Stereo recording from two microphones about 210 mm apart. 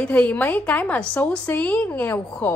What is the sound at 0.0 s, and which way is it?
A woman's voice, 5° left (ahead or behind).